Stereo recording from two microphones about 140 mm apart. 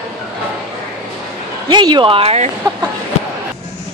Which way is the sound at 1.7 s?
30° right (ahead or behind).